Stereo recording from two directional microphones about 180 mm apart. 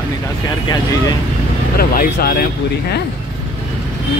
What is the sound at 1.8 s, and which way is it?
Speech, 55° left (ahead or behind).